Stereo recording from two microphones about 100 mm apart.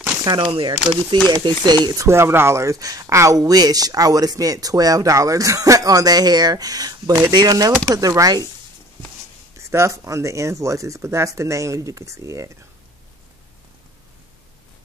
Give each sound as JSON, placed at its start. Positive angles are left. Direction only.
{"t": 0.2, "sound": "speech", "side_deg": -50}
{"t": 1.9, "sound": "speech", "side_deg": -30}
{"t": 9.6, "sound": "speech", "side_deg": -30}